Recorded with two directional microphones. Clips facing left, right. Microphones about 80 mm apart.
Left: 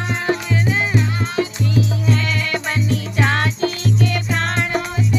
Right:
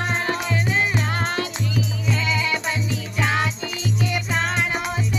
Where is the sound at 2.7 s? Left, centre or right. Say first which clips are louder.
Left 4 dB; left.